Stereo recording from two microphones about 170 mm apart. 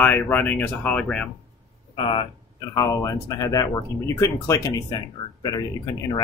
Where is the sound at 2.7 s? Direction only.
20° left (ahead or behind).